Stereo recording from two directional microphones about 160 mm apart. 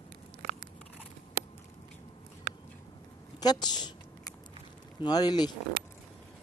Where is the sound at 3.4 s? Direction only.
25° left (ahead or behind).